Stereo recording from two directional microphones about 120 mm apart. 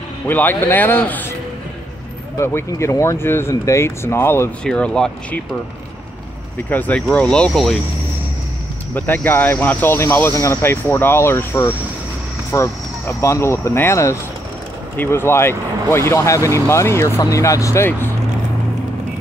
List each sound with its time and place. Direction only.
0.3 s speech: 15° left (ahead or behind)
2.3 s speech: 20° left (ahead or behind)
4.6 s speech: 10° left (ahead or behind)
6.7 s speech: 15° left (ahead or behind)
8.9 s speech: 15° left (ahead or behind)